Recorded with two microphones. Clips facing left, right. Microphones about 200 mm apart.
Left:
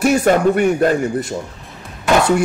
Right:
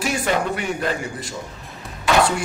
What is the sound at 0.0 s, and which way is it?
Speech, 50° left (ahead or behind).